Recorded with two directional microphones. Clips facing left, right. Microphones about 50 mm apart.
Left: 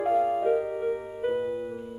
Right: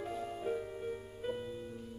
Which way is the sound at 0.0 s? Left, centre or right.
Left.